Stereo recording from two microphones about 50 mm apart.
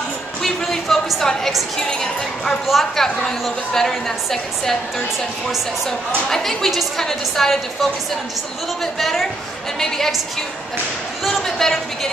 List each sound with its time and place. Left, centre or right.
0.4 s a sound: centre
1.9 s a woman's voice: centre
2.6 s a woman's voice: centre
5.9 s a woman's voice: centre
9.0 s a woman's voice: centre
11.2 s a woman's voice: centre